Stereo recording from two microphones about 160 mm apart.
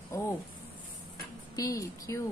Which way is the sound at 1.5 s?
20° left (ahead or behind).